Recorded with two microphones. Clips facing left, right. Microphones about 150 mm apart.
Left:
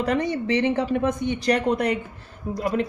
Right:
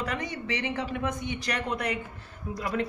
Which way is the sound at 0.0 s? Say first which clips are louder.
Left 10 dB; 30° left (ahead or behind).